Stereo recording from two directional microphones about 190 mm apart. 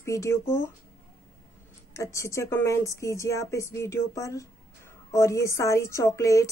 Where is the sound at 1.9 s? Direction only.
15° left (ahead or behind).